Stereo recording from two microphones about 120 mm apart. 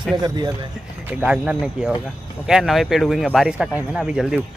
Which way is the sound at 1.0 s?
10° right (ahead or behind).